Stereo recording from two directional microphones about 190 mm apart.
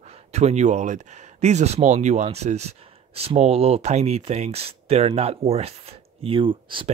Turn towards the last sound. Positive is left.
turn(degrees=-25)  # may be behind; listen again after turning